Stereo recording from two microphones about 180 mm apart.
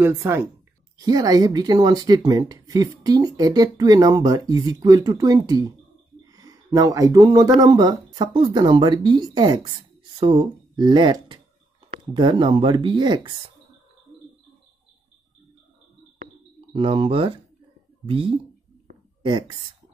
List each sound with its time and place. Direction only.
0.0 s speech: 15° right (ahead or behind)
16.7 s speech: 30° right (ahead or behind)